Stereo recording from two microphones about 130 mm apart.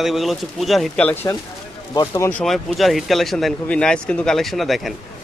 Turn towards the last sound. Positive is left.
turn(degrees=0)  # may be behind; listen again after turning